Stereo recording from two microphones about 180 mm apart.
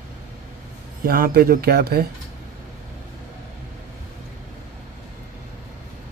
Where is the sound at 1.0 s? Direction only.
55° right (ahead or behind).